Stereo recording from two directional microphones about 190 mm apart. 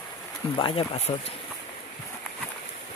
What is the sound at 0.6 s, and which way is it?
Speech, 30° left (ahead or behind).